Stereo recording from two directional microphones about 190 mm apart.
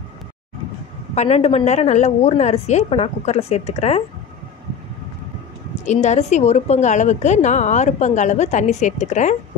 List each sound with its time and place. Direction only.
1.1 s a woman's voice: 35° left (ahead or behind)
5.9 s a woman's voice: 40° left (ahead or behind)